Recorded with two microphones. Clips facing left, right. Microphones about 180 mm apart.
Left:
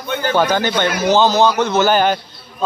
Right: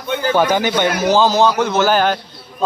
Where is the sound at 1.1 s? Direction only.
Centre (ahead or behind).